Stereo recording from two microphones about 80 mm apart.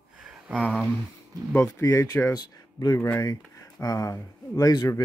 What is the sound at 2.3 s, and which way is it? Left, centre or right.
Speech, left.